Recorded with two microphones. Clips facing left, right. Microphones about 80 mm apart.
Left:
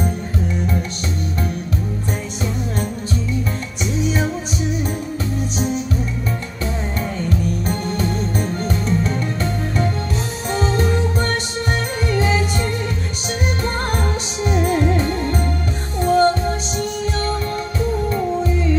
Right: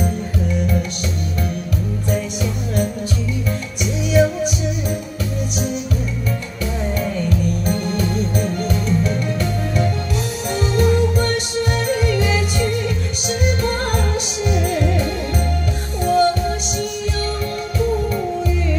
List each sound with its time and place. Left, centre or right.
3.8 s music: left
7.2 s music: left